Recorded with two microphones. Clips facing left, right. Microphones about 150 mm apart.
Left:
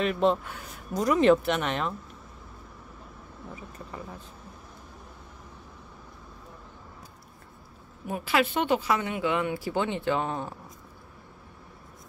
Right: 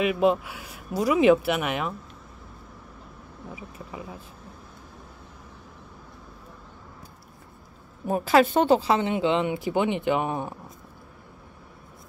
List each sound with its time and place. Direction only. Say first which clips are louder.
0.0 s speech: right 3 dB; 10° right (ahead or behind)
3.5 s speech: right 2 dB; 10° right (ahead or behind)
8.1 s speech: right 7 dB; 40° right (ahead or behind); by 10.5 s 15° right (ahead or behind)